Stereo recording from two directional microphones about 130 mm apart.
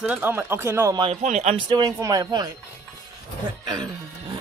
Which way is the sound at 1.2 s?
60° right (ahead or behind).